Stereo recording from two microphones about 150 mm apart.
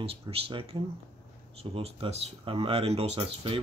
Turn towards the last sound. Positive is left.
turn(degrees=-40)  # may be behind; listen again after turning